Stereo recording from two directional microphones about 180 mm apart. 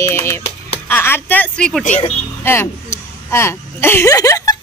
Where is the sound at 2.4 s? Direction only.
15° left (ahead or behind).